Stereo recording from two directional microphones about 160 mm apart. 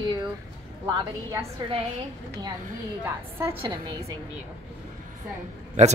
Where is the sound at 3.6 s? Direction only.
30° right (ahead or behind).